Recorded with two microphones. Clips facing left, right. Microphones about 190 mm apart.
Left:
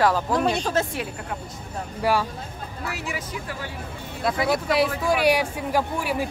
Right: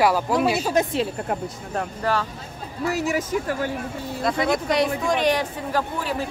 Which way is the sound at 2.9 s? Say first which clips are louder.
Right 12 dB; 45° right (ahead or behind).